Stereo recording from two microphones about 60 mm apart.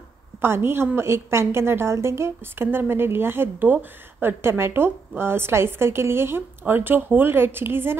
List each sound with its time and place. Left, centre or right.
0.4 s a woman's voice: right